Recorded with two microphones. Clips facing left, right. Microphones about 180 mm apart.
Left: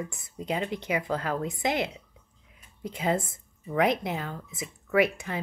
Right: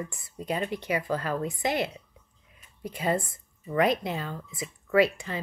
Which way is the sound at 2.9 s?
15° left (ahead or behind).